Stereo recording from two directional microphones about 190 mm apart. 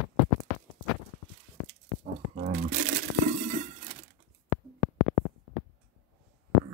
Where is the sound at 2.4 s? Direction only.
40° right (ahead or behind).